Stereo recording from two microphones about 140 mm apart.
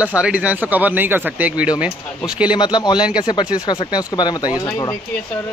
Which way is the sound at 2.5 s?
30° left (ahead or behind).